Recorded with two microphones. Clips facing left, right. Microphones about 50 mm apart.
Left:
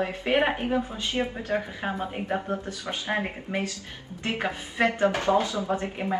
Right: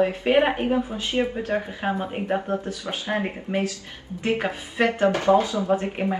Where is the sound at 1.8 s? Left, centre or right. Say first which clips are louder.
Right 5 dB; right.